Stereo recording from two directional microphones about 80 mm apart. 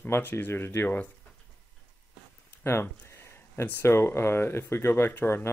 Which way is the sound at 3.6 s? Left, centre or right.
Left.